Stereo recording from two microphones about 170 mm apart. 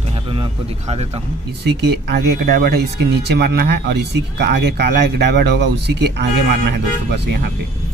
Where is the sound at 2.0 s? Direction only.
70° right (ahead or behind).